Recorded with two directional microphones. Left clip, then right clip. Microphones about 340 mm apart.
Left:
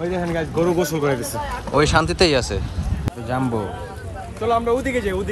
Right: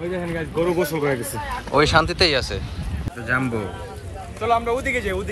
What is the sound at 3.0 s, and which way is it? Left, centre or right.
Speech, centre.